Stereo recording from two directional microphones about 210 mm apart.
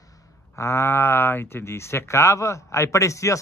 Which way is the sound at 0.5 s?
15° left (ahead or behind).